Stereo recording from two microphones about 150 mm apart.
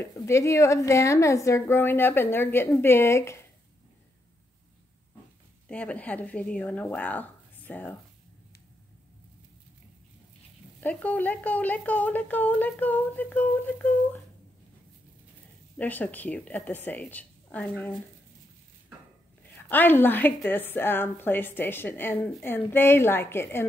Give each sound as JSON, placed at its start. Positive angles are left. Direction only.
{"t": 0.0, "sound": "a woman's voice", "side_deg": 20}
{"t": 5.7, "sound": "a woman's voice", "side_deg": 10}
{"t": 10.8, "sound": "a woman's voice", "side_deg": 10}
{"t": 15.8, "sound": "a woman's voice", "side_deg": 10}
{"t": 19.5, "sound": "a woman's voice", "side_deg": 10}